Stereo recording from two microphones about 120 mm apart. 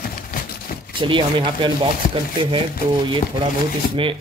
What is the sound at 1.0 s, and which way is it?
Speech, 45° right (ahead or behind).